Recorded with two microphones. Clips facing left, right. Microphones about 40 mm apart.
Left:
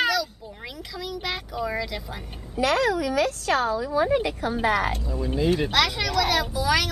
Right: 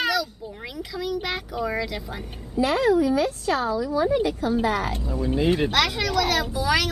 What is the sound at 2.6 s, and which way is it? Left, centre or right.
A woman's voice, left.